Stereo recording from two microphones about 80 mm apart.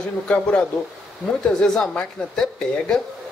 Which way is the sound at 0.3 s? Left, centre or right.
Centre.